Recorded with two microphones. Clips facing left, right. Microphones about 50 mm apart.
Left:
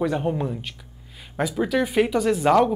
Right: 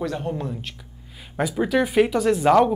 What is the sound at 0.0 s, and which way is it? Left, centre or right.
Speech, centre.